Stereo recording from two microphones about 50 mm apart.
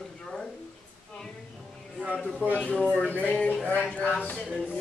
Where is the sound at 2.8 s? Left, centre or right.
Centre.